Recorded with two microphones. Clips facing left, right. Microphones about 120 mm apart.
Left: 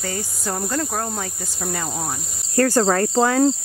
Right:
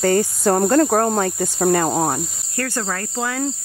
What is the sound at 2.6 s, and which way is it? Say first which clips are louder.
Insect: left 8 dB; 35° left (ahead or behind).